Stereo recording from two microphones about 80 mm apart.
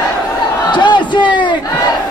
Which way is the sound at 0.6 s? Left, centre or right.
Left.